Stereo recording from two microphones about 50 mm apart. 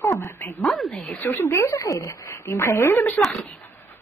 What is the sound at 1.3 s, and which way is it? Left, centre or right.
A woman's voice, left.